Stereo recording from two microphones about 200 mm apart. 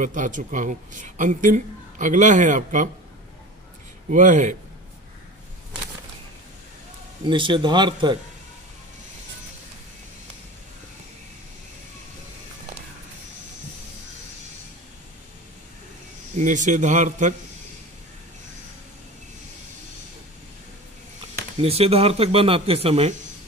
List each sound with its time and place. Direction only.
0.0 s a woman's voice: 40° right (ahead or behind)
4.1 s a woman's voice: 40° right (ahead or behind)
7.2 s speech: 25° right (ahead or behind)
16.3 s a woman's voice: 40° right (ahead or behind)
21.5 s speech: 30° right (ahead or behind)